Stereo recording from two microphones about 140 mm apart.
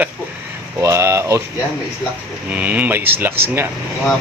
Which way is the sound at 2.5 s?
10° right (ahead or behind).